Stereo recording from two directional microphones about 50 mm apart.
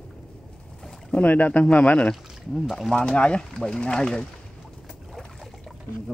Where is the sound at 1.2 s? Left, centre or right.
Left; by 4.2 s centre.